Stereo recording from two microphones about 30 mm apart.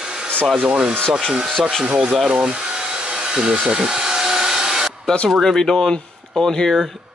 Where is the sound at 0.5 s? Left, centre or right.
Right.